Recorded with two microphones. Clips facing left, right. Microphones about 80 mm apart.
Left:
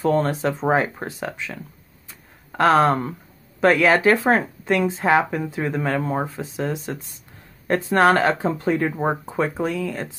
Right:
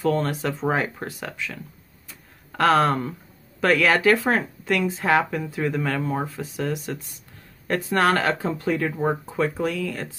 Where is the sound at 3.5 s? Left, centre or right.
Left.